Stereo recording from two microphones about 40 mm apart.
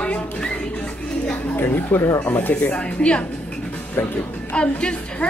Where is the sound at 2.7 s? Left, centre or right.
Left.